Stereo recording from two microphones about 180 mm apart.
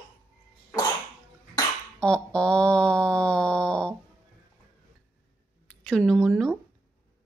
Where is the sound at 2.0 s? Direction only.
5° left (ahead or behind).